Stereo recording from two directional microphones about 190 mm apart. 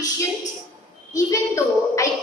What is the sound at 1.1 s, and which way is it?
Speech, 15° left (ahead or behind).